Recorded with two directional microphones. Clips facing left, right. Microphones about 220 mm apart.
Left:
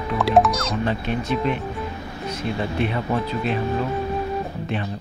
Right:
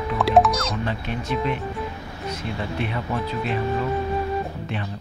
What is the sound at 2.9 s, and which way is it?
Speech, 30° left (ahead or behind).